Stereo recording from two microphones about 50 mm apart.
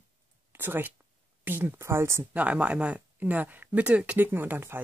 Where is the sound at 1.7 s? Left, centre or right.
Right.